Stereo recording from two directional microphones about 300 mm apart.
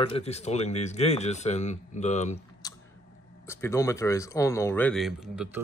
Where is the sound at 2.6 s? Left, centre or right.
Centre.